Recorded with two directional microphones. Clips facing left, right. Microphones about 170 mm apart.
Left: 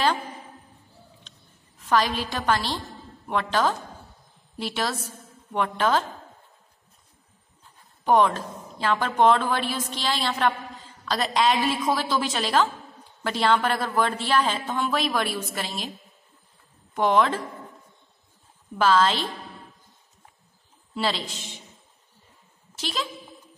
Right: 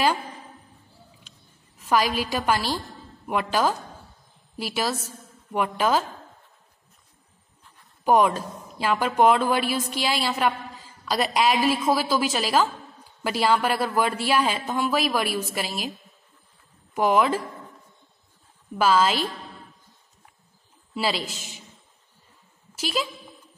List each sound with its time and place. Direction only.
1.3 s a sound: 10° right (ahead or behind)
1.8 s a woman's voice: 10° right (ahead or behind)
8.0 s a woman's voice: 10° right (ahead or behind)
16.9 s a woman's voice: 5° right (ahead or behind)
18.8 s a woman's voice: 10° right (ahead or behind)
20.9 s a woman's voice: 5° right (ahead or behind)
22.8 s a woman's voice: 10° right (ahead or behind)